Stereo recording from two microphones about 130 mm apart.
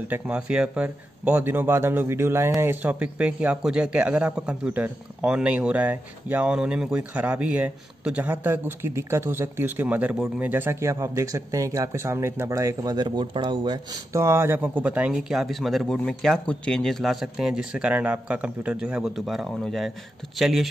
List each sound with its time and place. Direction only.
0.1 s a man's voice: 10° right (ahead or behind)
10.1 s speech: centre (ahead or behind)
10.4 s speech: 15° right (ahead or behind); by 13.7 s 40° right (ahead or behind)
14.1 s a man's voice: 20° right (ahead or behind); by 20.6 s centre (ahead or behind)